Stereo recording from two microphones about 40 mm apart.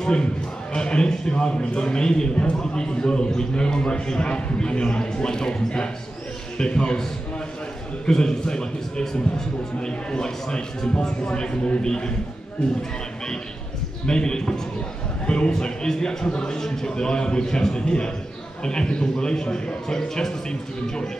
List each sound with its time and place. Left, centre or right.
0.0 s a man's voice: left
8.1 s a man's voice: centre
14.0 s a man's voice: centre